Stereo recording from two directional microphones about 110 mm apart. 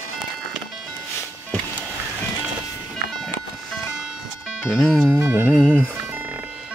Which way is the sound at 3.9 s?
5° right (ahead or behind).